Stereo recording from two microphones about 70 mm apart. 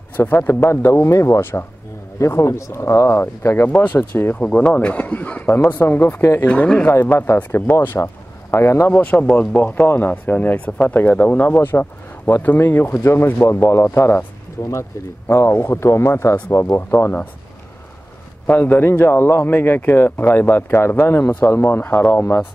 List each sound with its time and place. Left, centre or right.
0.2 s a man's voice: left
3.7 s speech: left
4.4 s speech: centre
6.4 s speech: centre
7.0 s a man's voice: left
8.9 s speech: centre
9.6 s a man's voice: left
18.5 s a man's voice: left